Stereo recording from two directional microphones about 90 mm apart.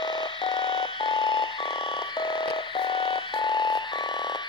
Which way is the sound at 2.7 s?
65° left (ahead or behind).